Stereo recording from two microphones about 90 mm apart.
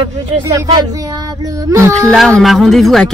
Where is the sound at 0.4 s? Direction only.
45° right (ahead or behind).